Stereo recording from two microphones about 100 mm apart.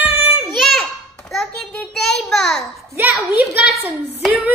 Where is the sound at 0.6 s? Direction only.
Centre (ahead or behind).